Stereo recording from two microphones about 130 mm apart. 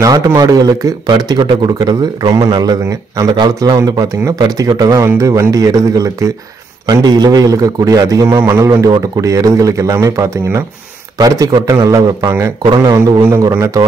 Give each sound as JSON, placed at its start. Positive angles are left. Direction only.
{"t": 0.0, "sound": "a man's voice", "side_deg": -25}
{"t": 13.2, "sound": "a man's voice", "side_deg": -20}